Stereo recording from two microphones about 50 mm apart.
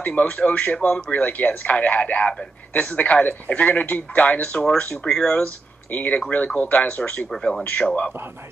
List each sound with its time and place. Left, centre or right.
0.0 s speech: left
5.9 s speech: left
7.2 s speech: centre
7.6 s speech: left